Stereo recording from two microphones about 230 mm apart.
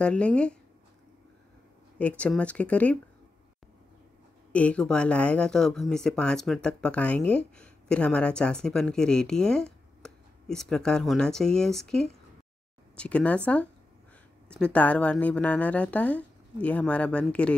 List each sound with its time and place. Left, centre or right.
0.0 s speech: centre
2.0 s speech: centre
4.5 s speech: centre
14.5 s speech: centre